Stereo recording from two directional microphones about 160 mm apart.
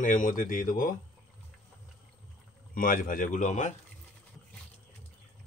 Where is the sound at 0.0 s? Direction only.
55° left (ahead or behind).